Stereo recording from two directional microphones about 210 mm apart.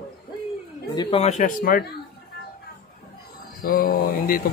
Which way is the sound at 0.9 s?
20° left (ahead or behind).